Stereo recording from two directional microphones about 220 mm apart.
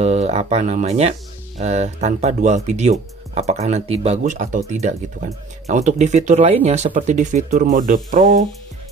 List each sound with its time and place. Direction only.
0.0 s speech: 30° right (ahead or behind)